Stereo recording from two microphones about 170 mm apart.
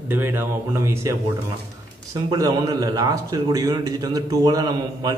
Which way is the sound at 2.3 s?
20° right (ahead or behind).